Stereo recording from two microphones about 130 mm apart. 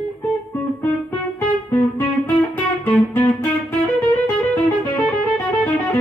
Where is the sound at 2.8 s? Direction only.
15° left (ahead or behind).